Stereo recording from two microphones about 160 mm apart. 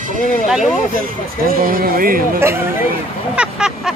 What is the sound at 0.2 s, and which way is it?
Speech, 50° left (ahead or behind).